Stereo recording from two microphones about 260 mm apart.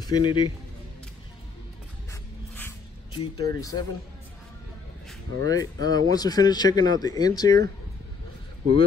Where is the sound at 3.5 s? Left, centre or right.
Centre.